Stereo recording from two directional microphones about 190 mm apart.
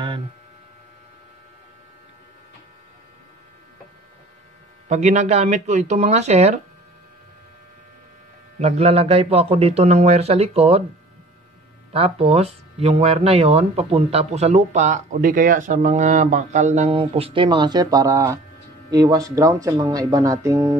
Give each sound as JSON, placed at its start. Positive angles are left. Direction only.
{"t": 4.8, "sound": "speech", "side_deg": -35}
{"t": 8.5, "sound": "speech", "side_deg": -35}
{"t": 11.9, "sound": "speech", "side_deg": -30}